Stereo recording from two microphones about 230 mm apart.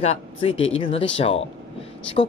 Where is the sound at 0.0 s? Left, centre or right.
Left.